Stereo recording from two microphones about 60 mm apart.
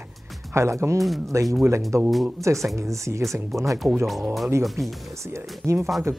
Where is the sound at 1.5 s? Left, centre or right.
Right.